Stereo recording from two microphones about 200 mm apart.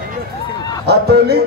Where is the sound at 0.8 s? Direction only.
55° right (ahead or behind).